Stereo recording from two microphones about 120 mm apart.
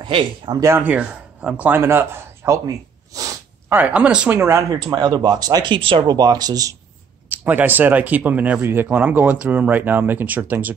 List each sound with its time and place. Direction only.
0.0 s speech: 40° right (ahead or behind)
0.6 s speech: 20° right (ahead or behind)
1.8 s speech: 20° right (ahead or behind)
3.2 s a sound: 30° right (ahead or behind)
3.7 s speech: 10° right (ahead or behind)
4.4 s speech: 20° right (ahead or behind)
7.2 s speech: 15° right (ahead or behind)